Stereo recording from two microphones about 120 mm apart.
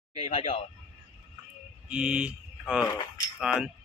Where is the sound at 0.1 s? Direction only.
55° left (ahead or behind).